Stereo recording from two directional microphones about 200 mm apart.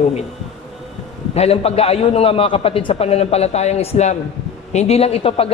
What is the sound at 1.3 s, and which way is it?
A man's voice, 30° left (ahead or behind).